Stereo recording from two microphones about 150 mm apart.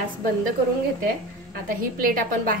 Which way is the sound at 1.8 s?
70° right (ahead or behind).